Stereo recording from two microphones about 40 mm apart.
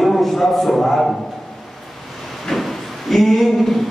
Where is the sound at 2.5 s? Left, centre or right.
Centre.